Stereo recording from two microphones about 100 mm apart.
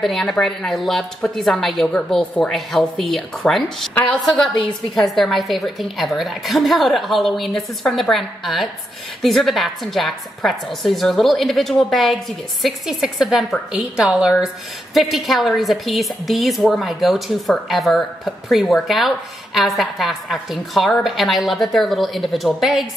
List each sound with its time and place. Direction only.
0.0 s a woman's voice: centre (ahead or behind)
4.9 s a woman's voice: centre (ahead or behind)